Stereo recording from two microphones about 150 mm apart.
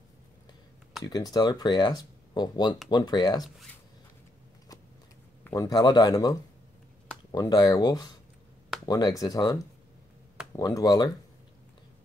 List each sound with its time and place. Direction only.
1.0 s speech: 25° left (ahead or behind)
5.5 s speech: 25° left (ahead or behind)
7.3 s speech: 25° left (ahead or behind)